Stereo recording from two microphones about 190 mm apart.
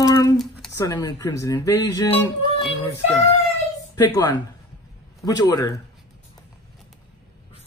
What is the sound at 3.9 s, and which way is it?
Speech, 15° left (ahead or behind).